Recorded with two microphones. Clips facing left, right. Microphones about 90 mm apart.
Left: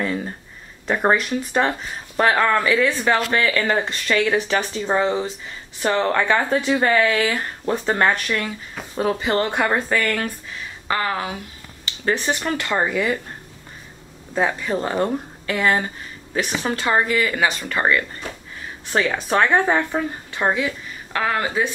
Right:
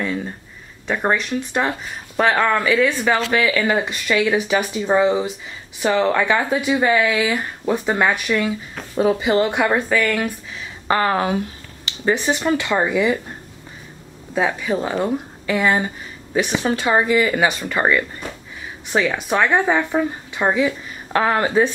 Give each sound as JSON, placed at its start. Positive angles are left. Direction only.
{"t": 0.0, "sound": "speech", "side_deg": 0}
{"t": 10.9, "sound": "speech", "side_deg": -30}
{"t": 12.0, "sound": "speech", "side_deg": -15}
{"t": 14.3, "sound": "speech", "side_deg": -5}
{"t": 15.4, "sound": "speech", "side_deg": -15}
{"t": 18.9, "sound": "speech", "side_deg": -5}
{"t": 20.5, "sound": "speech", "side_deg": -20}